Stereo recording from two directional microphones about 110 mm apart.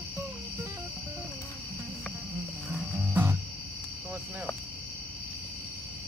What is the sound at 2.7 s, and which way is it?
Music, 15° right (ahead or behind).